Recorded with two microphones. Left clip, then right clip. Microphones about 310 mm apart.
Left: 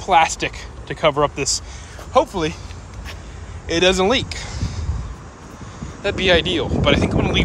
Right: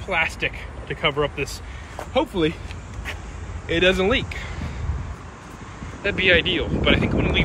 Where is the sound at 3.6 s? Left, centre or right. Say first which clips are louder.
Left 3 dB; centre.